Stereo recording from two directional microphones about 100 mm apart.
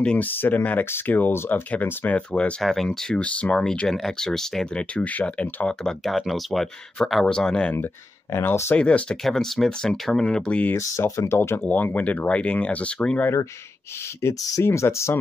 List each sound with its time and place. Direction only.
0.0 s speech: 15° left (ahead or behind)
2.6 s speech: 5° left (ahead or behind)
7.7 s speech: 25° left (ahead or behind)
8.7 s speech: 10° left (ahead or behind)
10.8 s speech: 30° left (ahead or behind); by 13.3 s 15° left (ahead or behind)
14.2 s speech: 30° left (ahead or behind)